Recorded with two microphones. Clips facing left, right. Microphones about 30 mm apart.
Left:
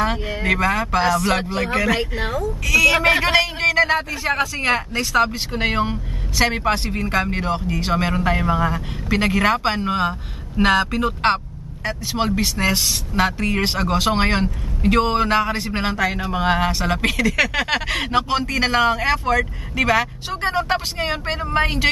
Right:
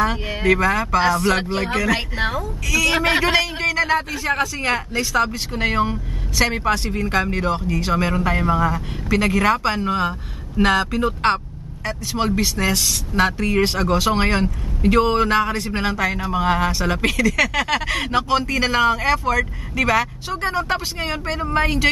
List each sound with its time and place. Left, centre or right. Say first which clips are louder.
0.4 s speech: right 2 dB; centre
2.0 s a woman's voice: even; right
2.6 s speech: left 5 dB; left
3.2 s speech: left 1 dB; centre
3.6 s speech: left 2 dB; left
4.6 s speech: left 1 dB; centre
11.2 s speech: even; centre
13.6 s speech: right 3 dB; centre
15.5 s speech: even; left
16.0 s speech: even; centre